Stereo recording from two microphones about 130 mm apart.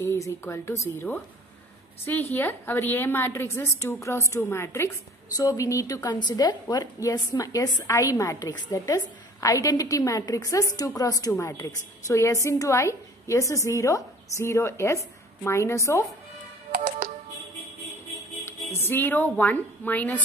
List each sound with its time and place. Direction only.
0.0 s a woman's voice: 20° left (ahead or behind)
2.3 s a woman's voice: 15° left (ahead or behind)
18.4 s a woman's voice: 20° left (ahead or behind)